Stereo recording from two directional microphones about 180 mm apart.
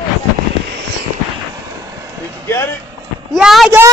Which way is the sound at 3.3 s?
Centre (ahead or behind).